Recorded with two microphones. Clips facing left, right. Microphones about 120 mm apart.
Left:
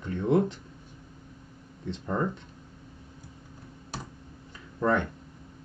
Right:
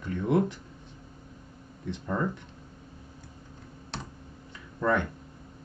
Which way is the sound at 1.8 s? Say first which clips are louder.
Left 1 dB; 25° left (ahead or behind).